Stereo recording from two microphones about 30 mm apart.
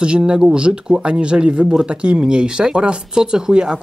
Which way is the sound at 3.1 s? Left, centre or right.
Right.